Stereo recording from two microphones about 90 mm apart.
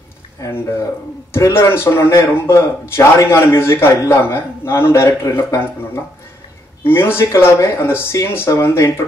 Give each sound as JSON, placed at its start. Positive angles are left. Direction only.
{"t": 0.4, "sound": "a man's voice", "side_deg": 35}